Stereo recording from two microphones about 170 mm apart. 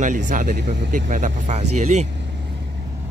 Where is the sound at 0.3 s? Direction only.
55° right (ahead or behind).